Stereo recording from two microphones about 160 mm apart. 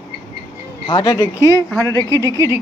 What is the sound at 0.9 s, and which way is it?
Speech, 25° left (ahead or behind).